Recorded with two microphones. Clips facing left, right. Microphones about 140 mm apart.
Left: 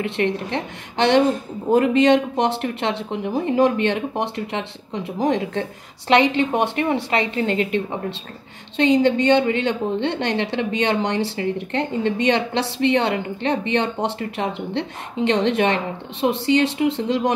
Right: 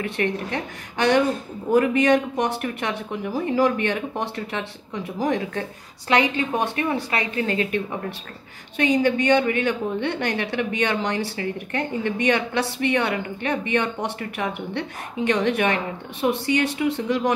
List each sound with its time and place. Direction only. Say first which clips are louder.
0.0 s a woman's voice: left 3 dB; 25° left (ahead or behind)